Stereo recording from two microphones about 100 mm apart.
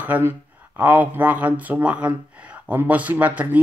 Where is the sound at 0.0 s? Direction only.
15° right (ahead or behind).